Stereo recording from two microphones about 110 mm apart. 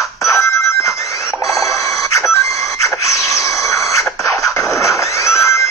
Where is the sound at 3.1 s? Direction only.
30° left (ahead or behind).